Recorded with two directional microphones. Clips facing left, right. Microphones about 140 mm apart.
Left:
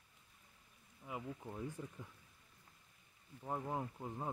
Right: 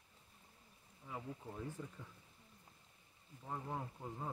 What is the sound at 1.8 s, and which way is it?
Speech, 15° left (ahead or behind).